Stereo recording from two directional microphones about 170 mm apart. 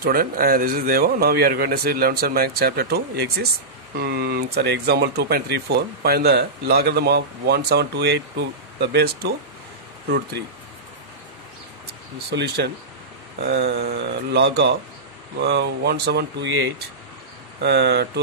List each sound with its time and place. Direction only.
0.0 s speech: 60° right (ahead or behind); by 10.4 s 75° right (ahead or behind)
12.3 s speech: 75° right (ahead or behind)
17.6 s speech: 80° right